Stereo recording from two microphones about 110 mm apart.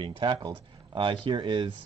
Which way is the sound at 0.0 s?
50° right (ahead or behind).